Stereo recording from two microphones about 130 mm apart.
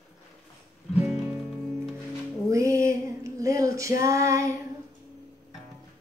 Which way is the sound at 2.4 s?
25° right (ahead or behind).